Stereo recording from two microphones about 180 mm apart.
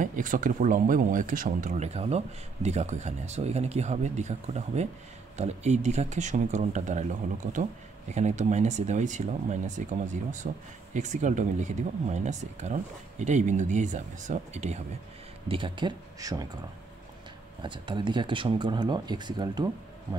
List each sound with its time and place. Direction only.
0.0 s speech: 50° right (ahead or behind)
15.4 s speech: 30° right (ahead or behind)
17.6 s speech: 25° right (ahead or behind)